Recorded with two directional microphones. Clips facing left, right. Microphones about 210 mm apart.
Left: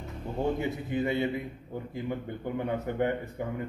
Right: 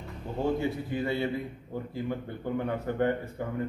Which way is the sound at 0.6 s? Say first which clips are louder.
Even; 20° left (ahead or behind).